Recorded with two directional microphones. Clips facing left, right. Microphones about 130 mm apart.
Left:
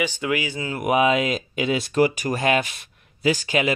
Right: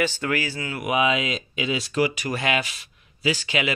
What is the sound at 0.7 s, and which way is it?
Speech, 45° left (ahead or behind).